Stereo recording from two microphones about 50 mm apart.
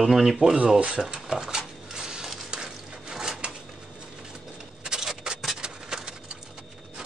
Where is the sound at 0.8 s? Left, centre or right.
Centre.